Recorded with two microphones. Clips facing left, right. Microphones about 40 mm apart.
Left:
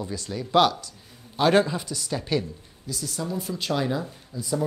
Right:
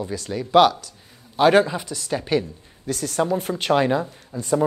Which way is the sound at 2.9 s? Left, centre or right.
Right.